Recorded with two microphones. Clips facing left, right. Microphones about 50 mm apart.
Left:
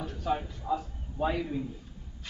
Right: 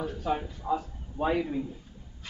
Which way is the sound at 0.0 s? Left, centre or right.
Centre.